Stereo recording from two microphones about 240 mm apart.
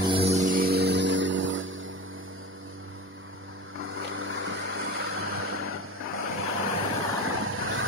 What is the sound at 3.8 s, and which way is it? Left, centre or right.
Vehicle, right.